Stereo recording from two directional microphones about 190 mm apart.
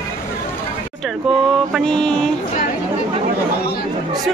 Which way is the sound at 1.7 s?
5° left (ahead or behind).